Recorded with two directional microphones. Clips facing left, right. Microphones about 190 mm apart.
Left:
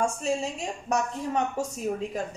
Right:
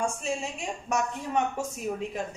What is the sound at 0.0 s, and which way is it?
A woman's voice, 35° left (ahead or behind).